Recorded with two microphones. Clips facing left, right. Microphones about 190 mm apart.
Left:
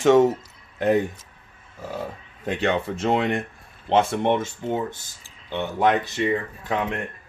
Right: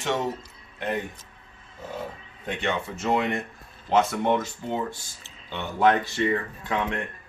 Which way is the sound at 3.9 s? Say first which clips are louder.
Left 2 dB; 25° left (ahead or behind).